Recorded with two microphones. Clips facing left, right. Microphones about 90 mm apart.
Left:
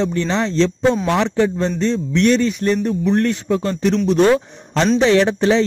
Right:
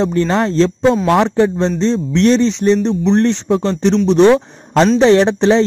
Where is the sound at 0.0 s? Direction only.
40° right (ahead or behind); by 4.0 s 25° right (ahead or behind).